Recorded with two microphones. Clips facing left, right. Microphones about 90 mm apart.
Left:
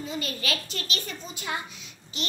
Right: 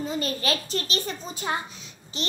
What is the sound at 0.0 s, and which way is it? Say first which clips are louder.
A child's voice: right 5 dB; 35° right (ahead or behind).